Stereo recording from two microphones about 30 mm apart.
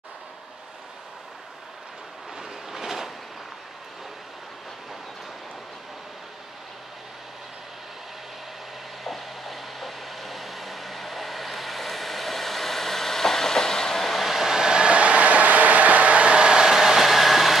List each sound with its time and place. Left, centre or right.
2.3 s train: centre
9.0 s train: centre
14.0 s train: centre
14.3 s train: centre
15.0 s vehicle: right
16.7 s train: centre